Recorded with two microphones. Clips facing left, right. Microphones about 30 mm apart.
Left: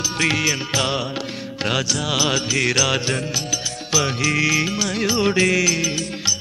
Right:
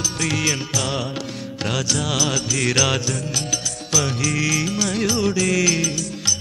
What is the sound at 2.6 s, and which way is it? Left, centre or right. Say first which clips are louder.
Music: right 1 dB; centre.